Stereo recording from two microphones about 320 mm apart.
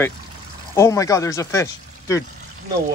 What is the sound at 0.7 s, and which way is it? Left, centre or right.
Speech, centre.